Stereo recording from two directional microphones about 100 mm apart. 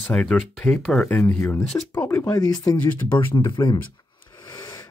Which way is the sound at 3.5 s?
50° left (ahead or behind).